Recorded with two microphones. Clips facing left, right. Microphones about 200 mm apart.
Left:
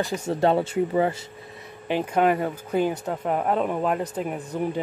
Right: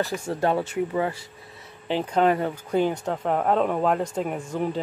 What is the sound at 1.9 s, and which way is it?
Speech, 10° left (ahead or behind).